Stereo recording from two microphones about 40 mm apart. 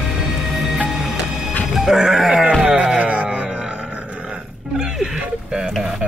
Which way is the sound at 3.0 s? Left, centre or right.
Right.